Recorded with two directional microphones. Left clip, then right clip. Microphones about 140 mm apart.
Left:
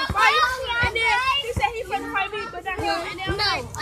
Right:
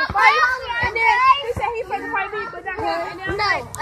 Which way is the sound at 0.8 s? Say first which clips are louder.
Right 8 dB; 40° left (ahead or behind).